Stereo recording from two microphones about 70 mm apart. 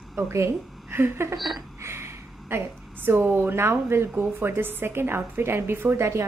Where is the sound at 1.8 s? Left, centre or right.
Right.